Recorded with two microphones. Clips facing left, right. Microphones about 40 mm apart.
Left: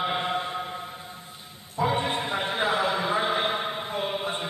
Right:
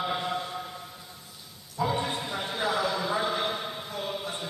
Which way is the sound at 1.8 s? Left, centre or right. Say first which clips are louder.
Left 3 dB; left.